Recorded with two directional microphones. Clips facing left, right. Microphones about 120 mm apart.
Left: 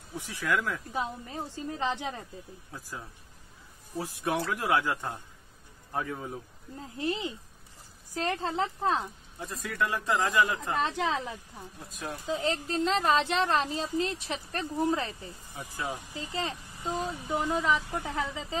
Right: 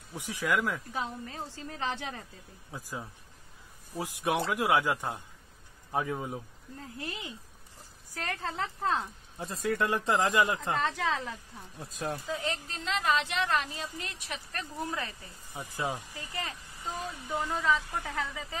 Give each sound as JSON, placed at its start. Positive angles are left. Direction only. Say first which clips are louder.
{"t": 0.1, "sound": "speech", "louder": "even", "side_deg": -15}
{"t": 0.9, "sound": "a woman's voice", "louder": "left 2 dB", "side_deg": 15}
{"t": 2.7, "sound": "speech", "louder": "right 3 dB", "side_deg": -15}
{"t": 6.8, "sound": "speech", "louder": "left 8 dB", "side_deg": 25}
{"t": 9.4, "sound": "speech", "louder": "right 2 dB", "side_deg": -30}
{"t": 10.8, "sound": "speech", "louder": "left 2 dB", "side_deg": 20}
{"t": 12.3, "sound": "a woman's voice", "louder": "left 5 dB", "side_deg": 35}
{"t": 15.5, "sound": "speech", "louder": "right 2 dB", "side_deg": -20}
{"t": 16.1, "sound": "speech", "louder": "left 5 dB", "side_deg": 20}